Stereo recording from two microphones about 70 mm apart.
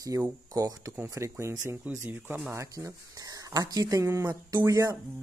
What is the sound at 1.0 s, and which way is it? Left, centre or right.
Speech, right.